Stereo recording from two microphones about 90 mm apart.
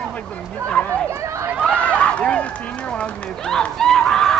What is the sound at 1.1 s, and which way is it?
Chatter, 35° right (ahead or behind).